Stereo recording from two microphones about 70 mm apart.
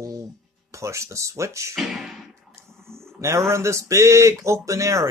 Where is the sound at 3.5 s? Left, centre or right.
Right.